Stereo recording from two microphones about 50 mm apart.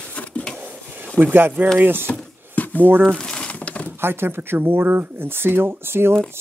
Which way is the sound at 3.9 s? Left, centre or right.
Right.